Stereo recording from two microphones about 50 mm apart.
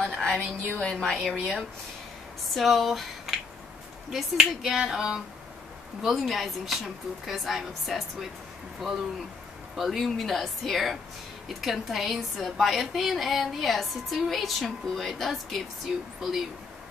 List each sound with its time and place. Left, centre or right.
0.0 s a sound: centre
0.7 s a woman's voice: centre
1.1 s a woman's voice: centre